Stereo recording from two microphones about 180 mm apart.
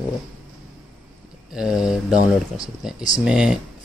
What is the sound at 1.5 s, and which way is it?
Speech, 5° right (ahead or behind).